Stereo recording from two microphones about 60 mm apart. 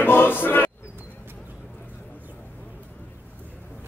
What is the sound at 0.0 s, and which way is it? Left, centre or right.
Music, left.